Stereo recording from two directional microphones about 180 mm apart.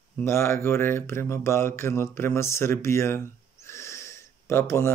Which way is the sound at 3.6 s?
15° left (ahead or behind).